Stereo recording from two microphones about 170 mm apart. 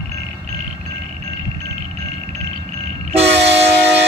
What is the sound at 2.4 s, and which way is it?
Train, 40° right (ahead or behind).